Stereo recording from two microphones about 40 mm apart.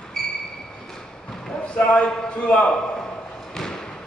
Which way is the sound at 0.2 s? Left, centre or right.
Centre.